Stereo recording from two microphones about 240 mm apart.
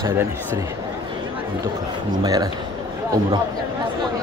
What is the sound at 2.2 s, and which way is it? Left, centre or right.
Speech, centre.